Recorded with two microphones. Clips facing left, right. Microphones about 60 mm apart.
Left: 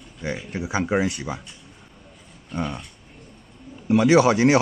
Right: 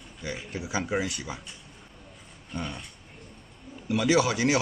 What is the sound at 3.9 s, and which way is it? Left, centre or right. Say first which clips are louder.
Speech: left 7 dB; left.